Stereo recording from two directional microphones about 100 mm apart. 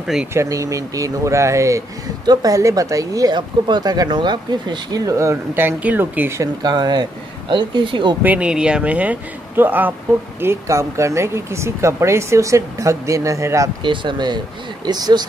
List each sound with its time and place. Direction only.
0.0 s speech: 5° right (ahead or behind)
0.3 s speech: 30° right (ahead or behind)
6.6 s speech: 45° right (ahead or behind)
8.2 s speech: 15° right (ahead or behind); by 13.7 s 30° right (ahead or behind)
13.8 s speech: 50° right (ahead or behind)